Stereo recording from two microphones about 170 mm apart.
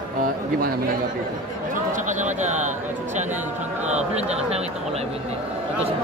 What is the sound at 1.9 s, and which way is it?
Speech, 45° right (ahead or behind).